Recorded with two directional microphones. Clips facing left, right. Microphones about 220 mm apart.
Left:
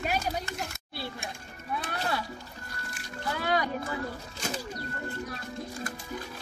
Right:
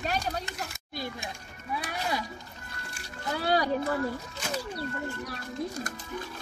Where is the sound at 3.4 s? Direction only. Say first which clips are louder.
Right 2 dB; 35° right (ahead or behind).